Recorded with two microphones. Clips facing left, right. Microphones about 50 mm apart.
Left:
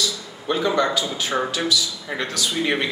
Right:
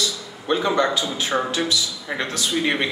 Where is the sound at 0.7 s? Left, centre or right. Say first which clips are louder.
Even; right.